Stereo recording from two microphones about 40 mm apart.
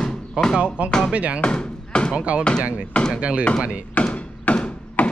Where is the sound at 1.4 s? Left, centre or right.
Left.